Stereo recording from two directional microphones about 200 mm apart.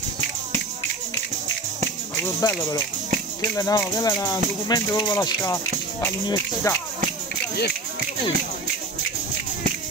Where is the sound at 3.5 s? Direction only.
15° left (ahead or behind).